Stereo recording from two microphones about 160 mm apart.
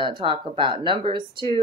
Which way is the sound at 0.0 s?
30° right (ahead or behind).